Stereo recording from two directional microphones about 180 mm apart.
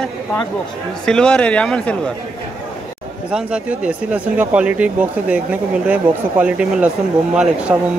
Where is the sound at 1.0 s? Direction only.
5° left (ahead or behind).